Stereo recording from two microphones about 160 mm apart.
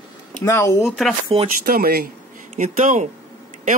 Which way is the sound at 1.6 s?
70° right (ahead or behind).